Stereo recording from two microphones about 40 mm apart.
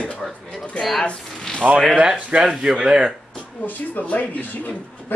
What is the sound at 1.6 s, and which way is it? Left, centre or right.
Speech, right.